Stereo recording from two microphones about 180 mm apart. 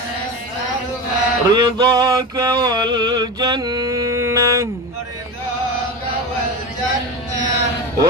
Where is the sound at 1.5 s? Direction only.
25° right (ahead or behind).